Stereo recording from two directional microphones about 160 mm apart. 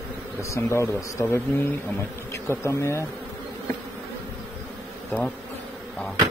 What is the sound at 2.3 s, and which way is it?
Bee, 15° left (ahead or behind).